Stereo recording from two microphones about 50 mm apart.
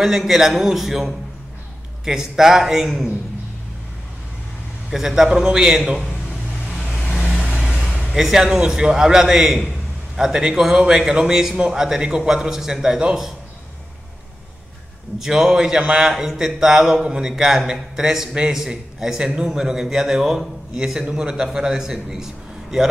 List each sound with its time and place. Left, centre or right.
0.0 s a man's voice: centre
4.9 s a man's voice: centre
8.1 s a man's voice: centre
15.1 s a man's voice: centre